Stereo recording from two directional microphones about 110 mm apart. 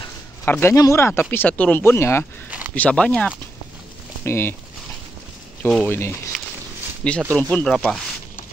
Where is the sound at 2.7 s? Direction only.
10° left (ahead or behind).